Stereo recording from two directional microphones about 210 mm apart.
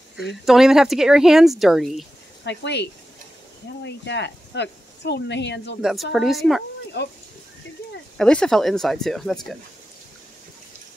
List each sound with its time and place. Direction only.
0.5 s speech: centre (ahead or behind)
2.4 s speech: 55° left (ahead or behind)
5.8 s speech: centre (ahead or behind)
8.2 s speech: 5° left (ahead or behind)